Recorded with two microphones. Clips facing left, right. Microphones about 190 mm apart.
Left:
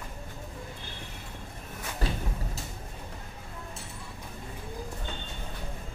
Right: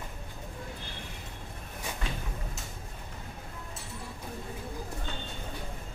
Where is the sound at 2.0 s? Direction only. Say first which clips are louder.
Left 7 dB; 35° left (ahead or behind).